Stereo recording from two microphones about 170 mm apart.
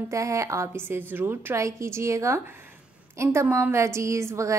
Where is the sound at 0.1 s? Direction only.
20° right (ahead or behind).